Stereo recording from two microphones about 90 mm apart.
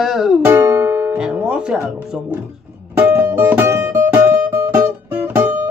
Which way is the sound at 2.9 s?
20° right (ahead or behind).